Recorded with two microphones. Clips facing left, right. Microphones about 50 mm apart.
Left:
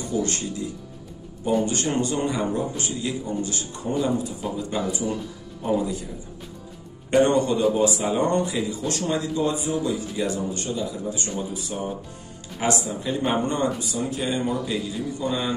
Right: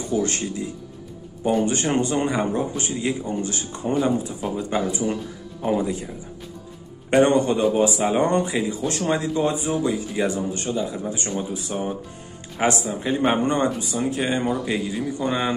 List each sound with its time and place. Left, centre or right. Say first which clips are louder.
0.2 s speech: right 2 dB; right
7.1 s speech: right 2 dB; right